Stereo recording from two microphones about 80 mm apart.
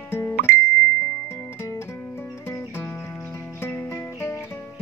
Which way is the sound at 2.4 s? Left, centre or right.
Left.